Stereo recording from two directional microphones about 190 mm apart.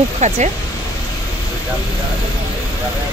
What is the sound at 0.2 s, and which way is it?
Speech, 35° right (ahead or behind).